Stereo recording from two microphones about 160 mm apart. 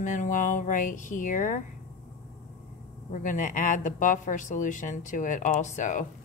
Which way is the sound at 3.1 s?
50° left (ahead or behind).